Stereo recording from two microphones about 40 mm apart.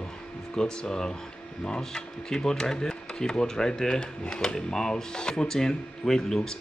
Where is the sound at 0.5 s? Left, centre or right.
Centre.